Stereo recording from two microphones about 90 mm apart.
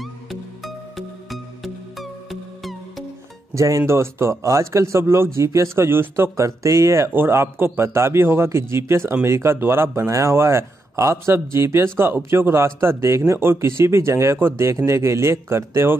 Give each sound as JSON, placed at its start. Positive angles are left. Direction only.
{"t": 0.0, "sound": "music", "side_deg": 0}
{"t": 3.5, "sound": "a man's voice", "side_deg": -35}